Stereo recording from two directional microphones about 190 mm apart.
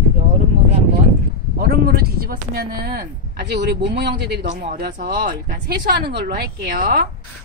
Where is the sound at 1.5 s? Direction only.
50° right (ahead or behind).